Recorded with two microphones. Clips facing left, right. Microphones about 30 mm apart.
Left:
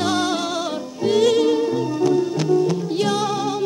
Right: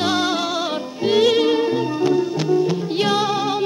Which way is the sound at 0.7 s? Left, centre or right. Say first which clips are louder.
Even; right.